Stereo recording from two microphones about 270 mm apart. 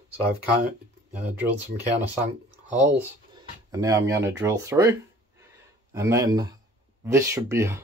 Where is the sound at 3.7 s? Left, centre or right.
Centre.